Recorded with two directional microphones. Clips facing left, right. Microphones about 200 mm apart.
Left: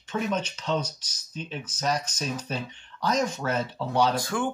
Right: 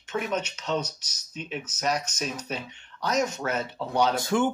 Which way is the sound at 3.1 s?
5° right (ahead or behind).